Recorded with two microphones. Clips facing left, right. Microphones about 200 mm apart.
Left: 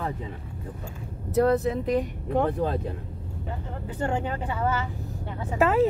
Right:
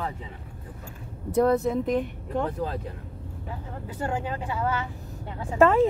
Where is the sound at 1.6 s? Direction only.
60° left (ahead or behind).